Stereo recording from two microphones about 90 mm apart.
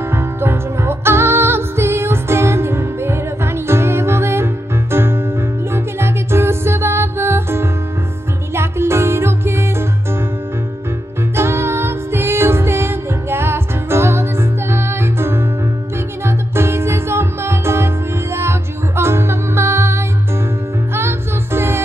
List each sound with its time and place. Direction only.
0.1 s music: 25° right (ahead or behind)
11.3 s music: 25° right (ahead or behind)
21.5 s music: 25° right (ahead or behind)